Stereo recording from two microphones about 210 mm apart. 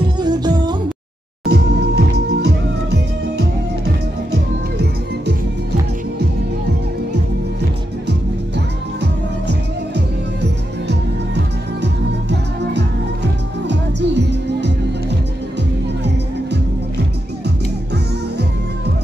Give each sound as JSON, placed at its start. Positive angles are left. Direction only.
{"t": 0.2, "sound": "music", "side_deg": -20}
{"t": 1.4, "sound": "music", "side_deg": -50}
{"t": 9.0, "sound": "music", "side_deg": -55}